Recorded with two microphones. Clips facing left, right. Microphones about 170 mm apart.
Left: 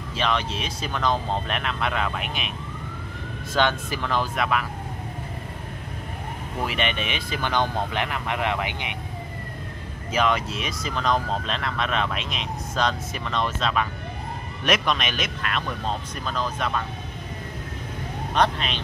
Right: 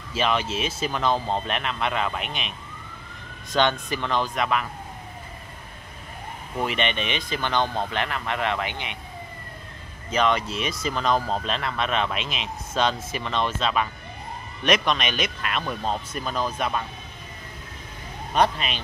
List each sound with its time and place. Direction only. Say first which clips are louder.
0.1 s speech: right 1 dB; 5° right (ahead or behind)
3.5 s speech: right 1 dB; 5° left (ahead or behind)
6.6 s speech: right 1 dB; 5° left (ahead or behind)
10.1 s speech: right 1 dB; 5° left (ahead or behind); by 16.8 s 10° right (ahead or behind)
18.3 s speech: right 1 dB; 10° right (ahead or behind)